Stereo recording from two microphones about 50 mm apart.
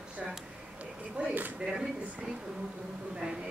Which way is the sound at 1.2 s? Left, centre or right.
Right.